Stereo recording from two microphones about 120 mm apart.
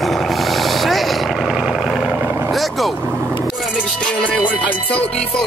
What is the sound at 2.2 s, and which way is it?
Vehicle, 20° right (ahead or behind).